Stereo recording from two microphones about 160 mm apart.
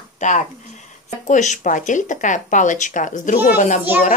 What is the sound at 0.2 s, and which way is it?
Speech, 50° left (ahead or behind).